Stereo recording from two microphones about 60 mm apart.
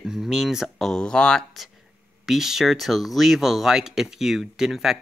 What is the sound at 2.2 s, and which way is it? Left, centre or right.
Speech, centre.